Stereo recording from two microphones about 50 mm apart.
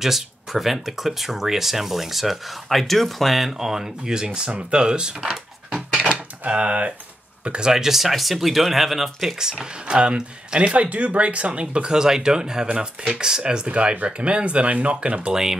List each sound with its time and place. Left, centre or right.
0.0 s speech: centre
6.4 s speech: right